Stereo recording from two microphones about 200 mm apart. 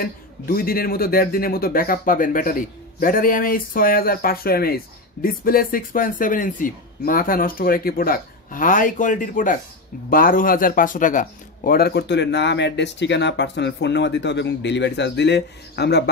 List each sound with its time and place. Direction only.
0.0 s speech: 45° left (ahead or behind)